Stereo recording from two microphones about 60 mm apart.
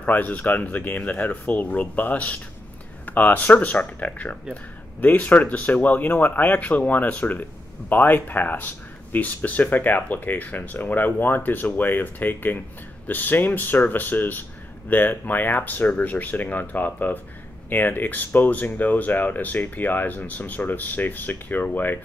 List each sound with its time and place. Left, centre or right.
0.0 s speech: left